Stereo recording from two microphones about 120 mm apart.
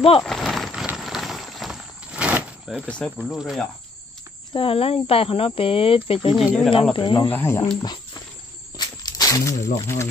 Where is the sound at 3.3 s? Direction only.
Centre (ahead or behind).